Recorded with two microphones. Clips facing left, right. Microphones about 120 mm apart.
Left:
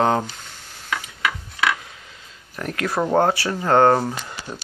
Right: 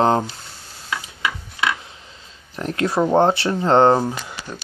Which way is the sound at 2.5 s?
25° right (ahead or behind).